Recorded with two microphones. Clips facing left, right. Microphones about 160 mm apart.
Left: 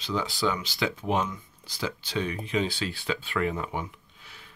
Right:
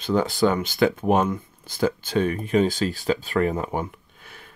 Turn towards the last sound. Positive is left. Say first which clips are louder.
# right 5 dB
turn(degrees=-50)  # may be behind; listen again after turning